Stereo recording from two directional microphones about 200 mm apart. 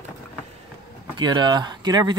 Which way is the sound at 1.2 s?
20° right (ahead or behind).